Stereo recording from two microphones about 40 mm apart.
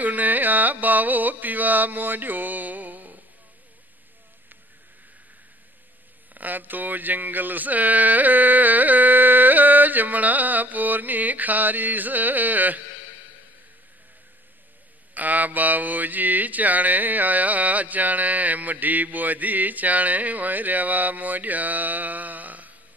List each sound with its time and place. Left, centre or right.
0.0 s carnatic music: right
6.3 s speech: right
15.1 s mantra: right